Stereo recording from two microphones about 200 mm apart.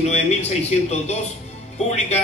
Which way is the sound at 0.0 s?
35° left (ahead or behind).